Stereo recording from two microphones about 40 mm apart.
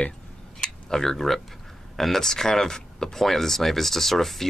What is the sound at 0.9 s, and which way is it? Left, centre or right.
Speech, centre.